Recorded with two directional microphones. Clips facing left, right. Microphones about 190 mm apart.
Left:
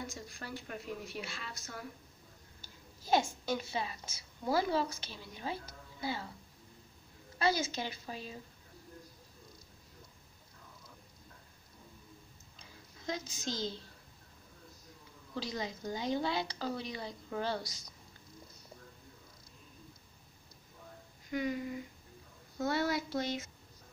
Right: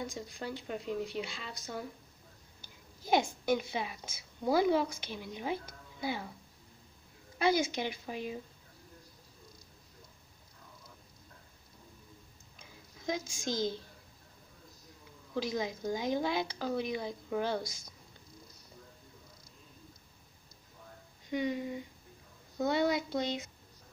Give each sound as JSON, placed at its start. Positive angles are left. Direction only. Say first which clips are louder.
{"t": 0.4, "sound": "a woman's voice", "louder": "right 5 dB", "side_deg": -20}
{"t": 7.3, "sound": "a woman's voice", "louder": "right 3 dB", "side_deg": -15}
{"t": 13.0, "sound": "a woman's voice", "louder": "right 3 dB", "side_deg": -10}
{"t": 15.3, "sound": "a woman's voice", "louder": "right 5 dB", "side_deg": -10}
{"t": 21.3, "sound": "a woman's voice", "louder": "right 2 dB", "side_deg": -25}